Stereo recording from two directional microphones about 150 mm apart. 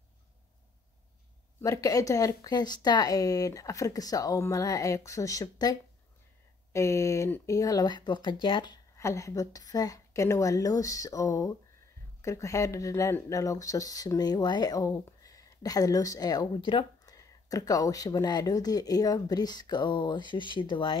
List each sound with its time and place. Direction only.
1.6 s speech: 20° left (ahead or behind)
8.9 s speech: 20° left (ahead or behind)